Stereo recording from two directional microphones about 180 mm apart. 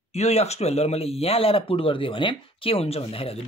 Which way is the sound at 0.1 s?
35° left (ahead or behind).